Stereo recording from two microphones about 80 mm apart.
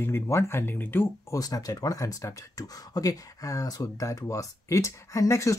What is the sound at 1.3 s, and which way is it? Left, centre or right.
Speech, left.